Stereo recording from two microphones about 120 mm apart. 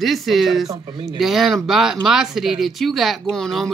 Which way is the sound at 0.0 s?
Centre (ahead or behind).